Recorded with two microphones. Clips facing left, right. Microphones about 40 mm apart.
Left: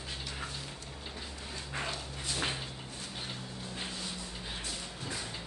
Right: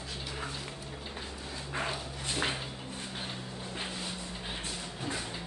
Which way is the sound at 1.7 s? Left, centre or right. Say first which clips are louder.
Right 3 dB; centre.